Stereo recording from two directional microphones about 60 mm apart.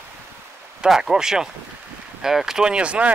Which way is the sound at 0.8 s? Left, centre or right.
Centre.